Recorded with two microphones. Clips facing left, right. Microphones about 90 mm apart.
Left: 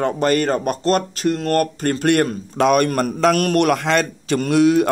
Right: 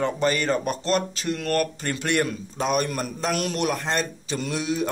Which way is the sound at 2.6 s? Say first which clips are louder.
Left 9 dB; 70° left (ahead or behind).